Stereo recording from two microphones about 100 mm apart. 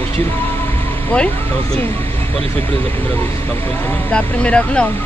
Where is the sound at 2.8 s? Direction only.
20° left (ahead or behind).